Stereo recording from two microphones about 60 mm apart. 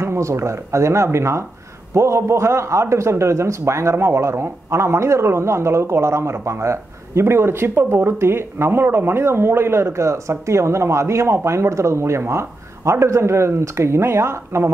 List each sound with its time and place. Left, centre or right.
0.0 s a man's voice: right